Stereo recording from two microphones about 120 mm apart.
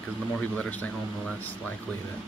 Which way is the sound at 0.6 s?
10° left (ahead or behind).